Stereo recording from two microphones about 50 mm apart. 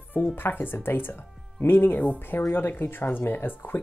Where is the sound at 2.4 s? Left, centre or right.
Left.